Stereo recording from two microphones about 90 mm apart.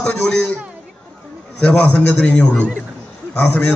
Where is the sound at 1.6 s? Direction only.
15° left (ahead or behind).